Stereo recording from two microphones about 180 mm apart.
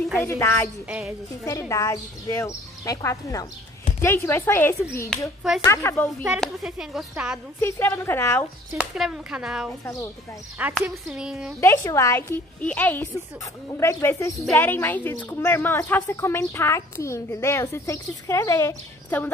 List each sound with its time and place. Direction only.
0.2 s a woman's voice: 15° left (ahead or behind)
0.8 s speech: 5° right (ahead or behind)
1.4 s a woman's voice: 15° left (ahead or behind)
6.4 s speech: centre (ahead or behind)
7.6 s a woman's voice: 15° left (ahead or behind)
8.7 s speech: 5° right (ahead or behind)
9.8 s a woman's voice: 15° left (ahead or behind)
10.7 s speech: 5° right (ahead or behind)
11.6 s a woman's voice: 15° left (ahead or behind)